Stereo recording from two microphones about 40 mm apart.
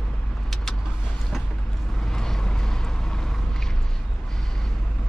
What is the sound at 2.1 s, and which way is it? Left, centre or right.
Vehicle, centre.